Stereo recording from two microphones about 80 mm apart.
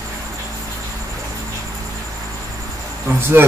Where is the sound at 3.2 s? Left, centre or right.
Right.